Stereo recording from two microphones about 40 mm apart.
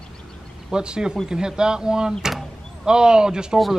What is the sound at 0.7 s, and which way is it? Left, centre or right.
Speech, centre.